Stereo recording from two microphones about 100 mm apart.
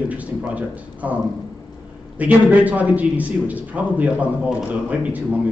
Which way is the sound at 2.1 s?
15° right (ahead or behind).